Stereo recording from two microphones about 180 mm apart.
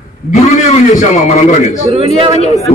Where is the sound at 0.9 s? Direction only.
40° left (ahead or behind).